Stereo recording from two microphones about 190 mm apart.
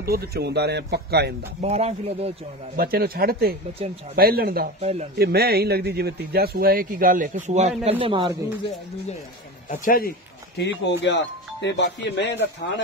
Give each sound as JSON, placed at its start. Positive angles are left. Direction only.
{"t": 0.0, "sound": "speech", "side_deg": -55}
{"t": 1.6, "sound": "speech", "side_deg": -35}
{"t": 2.7, "sound": "speech", "side_deg": -50}
{"t": 9.7, "sound": "a man's voice", "side_deg": 50}
{"t": 10.6, "sound": "speech", "side_deg": 65}